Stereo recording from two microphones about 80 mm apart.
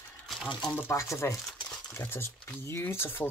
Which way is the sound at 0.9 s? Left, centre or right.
Left.